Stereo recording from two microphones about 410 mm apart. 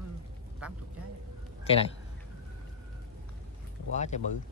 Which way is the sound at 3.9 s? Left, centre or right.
Centre.